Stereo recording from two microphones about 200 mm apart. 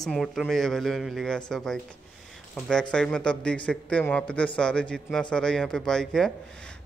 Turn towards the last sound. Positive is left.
turn(degrees=5)  # may be behind; listen again after turning